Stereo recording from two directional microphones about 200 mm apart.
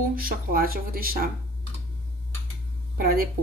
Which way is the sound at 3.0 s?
50° right (ahead or behind).